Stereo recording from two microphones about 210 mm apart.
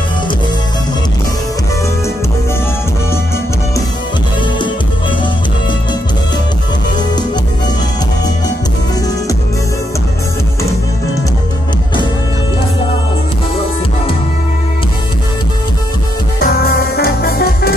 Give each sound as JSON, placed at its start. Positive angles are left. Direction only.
{"t": 16.3, "sound": "music", "side_deg": 45}